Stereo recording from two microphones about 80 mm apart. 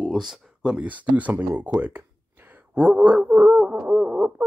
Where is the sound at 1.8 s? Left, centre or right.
Centre.